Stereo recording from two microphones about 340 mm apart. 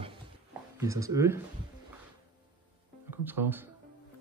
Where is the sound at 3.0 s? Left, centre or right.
Centre.